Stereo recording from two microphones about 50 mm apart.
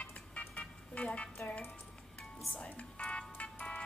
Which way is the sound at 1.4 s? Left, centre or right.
Left.